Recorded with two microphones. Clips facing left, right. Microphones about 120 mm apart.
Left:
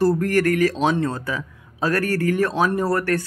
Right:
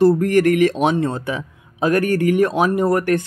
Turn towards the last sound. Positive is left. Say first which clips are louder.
# right 4 dB
turn(degrees=-15)  # may be behind; listen again after turning